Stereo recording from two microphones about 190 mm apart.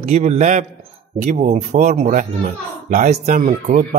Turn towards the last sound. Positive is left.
turn(degrees=-45)  # may be behind; listen again after turning